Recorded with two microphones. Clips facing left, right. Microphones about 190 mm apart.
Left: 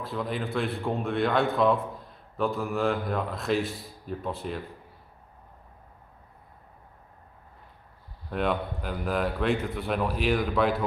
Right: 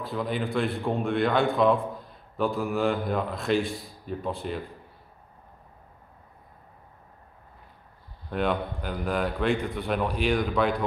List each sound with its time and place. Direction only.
0.0 s a man's voice: centre (ahead or behind)
8.3 s a man's voice: centre (ahead or behind)